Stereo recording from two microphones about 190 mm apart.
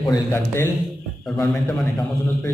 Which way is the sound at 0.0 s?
15° left (ahead or behind).